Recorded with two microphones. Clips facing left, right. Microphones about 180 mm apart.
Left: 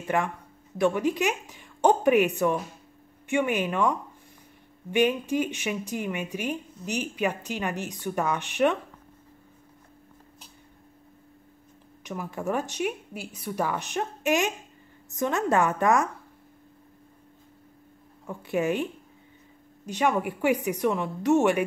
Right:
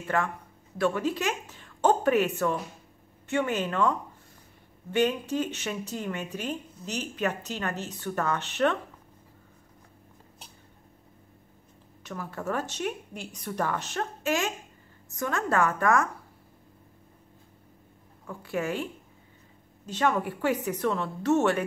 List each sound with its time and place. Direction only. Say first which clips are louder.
0.0 s a woman's voice: left 2 dB; 15° left (ahead or behind)
12.0 s a woman's voice: left 3 dB; 15° left (ahead or behind)
18.2 s a woman's voice: left 4 dB; 20° left (ahead or behind)
19.9 s a woman's voice: left 1 dB; 15° left (ahead or behind)